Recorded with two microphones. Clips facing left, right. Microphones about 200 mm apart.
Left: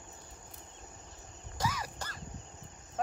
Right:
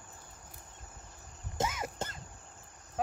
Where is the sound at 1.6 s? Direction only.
25° right (ahead or behind).